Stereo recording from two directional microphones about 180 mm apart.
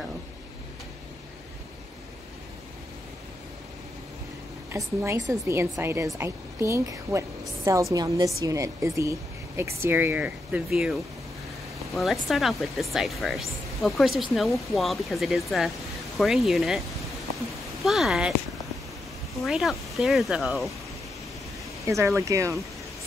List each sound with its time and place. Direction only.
4.7 s a woman's voice: 15° right (ahead or behind); by 16.8 s centre (ahead or behind)
17.8 s speech: centre (ahead or behind)
19.4 s speech: centre (ahead or behind)
21.8 s speech: 15° right (ahead or behind)